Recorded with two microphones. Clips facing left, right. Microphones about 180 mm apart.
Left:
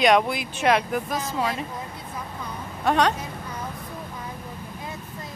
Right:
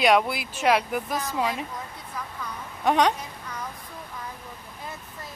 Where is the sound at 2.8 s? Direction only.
15° right (ahead or behind).